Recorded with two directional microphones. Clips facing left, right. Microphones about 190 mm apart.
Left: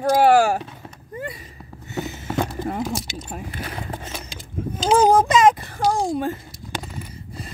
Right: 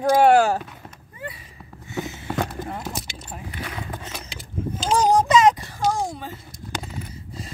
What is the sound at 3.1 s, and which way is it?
Speech, 40° left (ahead or behind).